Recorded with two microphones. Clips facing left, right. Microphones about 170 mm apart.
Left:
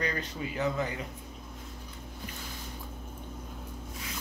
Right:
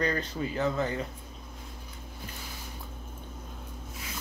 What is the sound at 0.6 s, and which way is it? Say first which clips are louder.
Speech: right 2 dB; 15° left (ahead or behind).